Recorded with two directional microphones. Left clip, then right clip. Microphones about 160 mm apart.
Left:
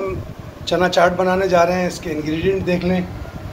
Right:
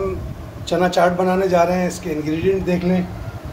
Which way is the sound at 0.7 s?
15° right (ahead or behind).